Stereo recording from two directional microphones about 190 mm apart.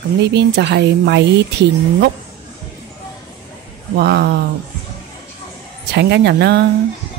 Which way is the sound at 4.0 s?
60° right (ahead or behind).